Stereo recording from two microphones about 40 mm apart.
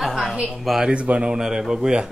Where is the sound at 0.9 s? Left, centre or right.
Right.